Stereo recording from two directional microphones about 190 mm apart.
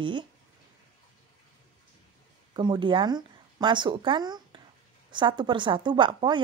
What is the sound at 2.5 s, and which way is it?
A woman's voice, 25° right (ahead or behind).